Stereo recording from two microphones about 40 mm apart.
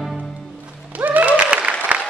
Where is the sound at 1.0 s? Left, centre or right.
Right.